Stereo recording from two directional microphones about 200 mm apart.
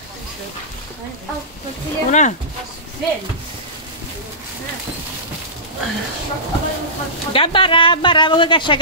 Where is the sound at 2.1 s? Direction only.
35° left (ahead or behind).